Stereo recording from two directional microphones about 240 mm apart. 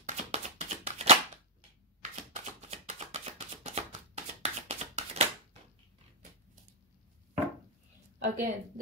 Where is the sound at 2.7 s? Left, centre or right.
Right.